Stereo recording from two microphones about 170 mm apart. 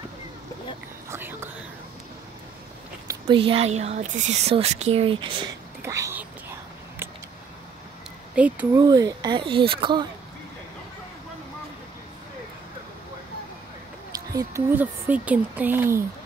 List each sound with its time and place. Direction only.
1.1 s whispering: 15° right (ahead or behind)
3.3 s speech: 30° right (ahead or behind)
5.8 s whispering: 15° right (ahead or behind)
8.4 s a woman's voice: 10° right (ahead or behind)
8.7 s speech: 20° right (ahead or behind)
14.1 s a sound: 20° right (ahead or behind)
14.8 s a woman's voice: 10° right (ahead or behind)